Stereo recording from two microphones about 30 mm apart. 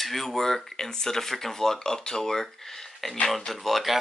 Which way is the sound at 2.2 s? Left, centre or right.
Centre.